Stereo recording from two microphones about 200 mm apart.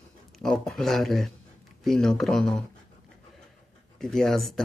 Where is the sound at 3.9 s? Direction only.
Centre (ahead or behind).